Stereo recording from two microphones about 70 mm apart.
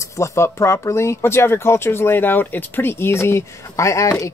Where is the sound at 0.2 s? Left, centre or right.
Left.